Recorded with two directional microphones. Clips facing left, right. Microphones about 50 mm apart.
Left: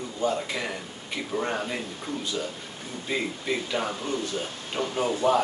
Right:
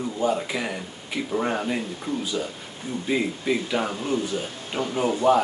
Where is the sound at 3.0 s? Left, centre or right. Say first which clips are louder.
Right 4 dB; centre.